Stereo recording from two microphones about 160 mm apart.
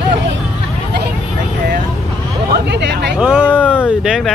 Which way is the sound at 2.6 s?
90° right.